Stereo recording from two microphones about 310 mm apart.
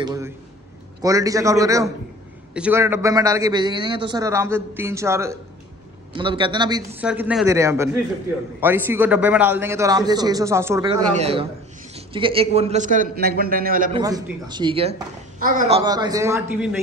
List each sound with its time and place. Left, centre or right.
0.0 s a man's voice: centre
14.0 s a man's voice: centre
15.8 s a man's voice: centre